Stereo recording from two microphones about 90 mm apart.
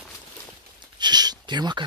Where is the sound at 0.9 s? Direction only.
50° right (ahead or behind).